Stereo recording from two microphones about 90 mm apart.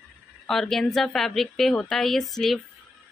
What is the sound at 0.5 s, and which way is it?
Speech, 5° left (ahead or behind).